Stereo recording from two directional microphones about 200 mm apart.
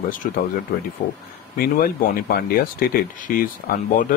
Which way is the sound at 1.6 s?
45° left (ahead or behind).